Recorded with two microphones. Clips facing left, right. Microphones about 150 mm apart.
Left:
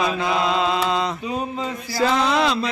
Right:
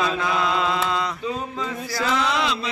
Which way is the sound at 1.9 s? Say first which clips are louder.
Left 4 dB; 35° left (ahead or behind).